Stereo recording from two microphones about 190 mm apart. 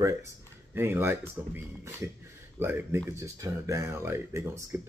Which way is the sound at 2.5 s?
10° right (ahead or behind).